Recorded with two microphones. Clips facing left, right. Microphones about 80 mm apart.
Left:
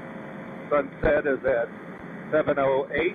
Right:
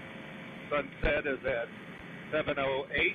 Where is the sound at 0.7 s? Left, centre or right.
Left.